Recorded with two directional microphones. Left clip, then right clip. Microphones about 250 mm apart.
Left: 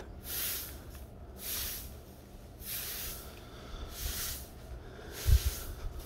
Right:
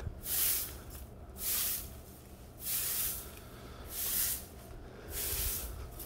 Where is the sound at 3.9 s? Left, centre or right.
Right.